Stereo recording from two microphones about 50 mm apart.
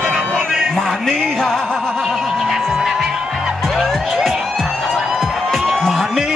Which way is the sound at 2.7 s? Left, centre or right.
Centre.